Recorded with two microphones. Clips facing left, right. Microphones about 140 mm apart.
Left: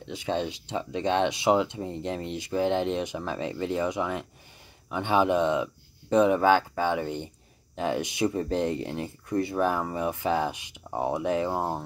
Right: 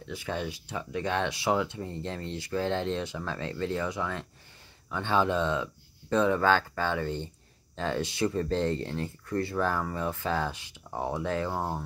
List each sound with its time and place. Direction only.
0.0 s speech: 20° left (ahead or behind)